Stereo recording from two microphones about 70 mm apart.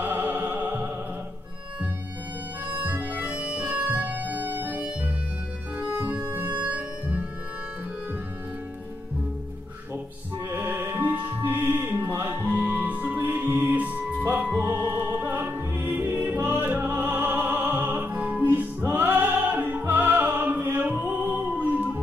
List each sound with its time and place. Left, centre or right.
0.0 s music: right
2.6 s harmonica: right
5.8 s music: right
6.6 s music: right
10.5 s music: right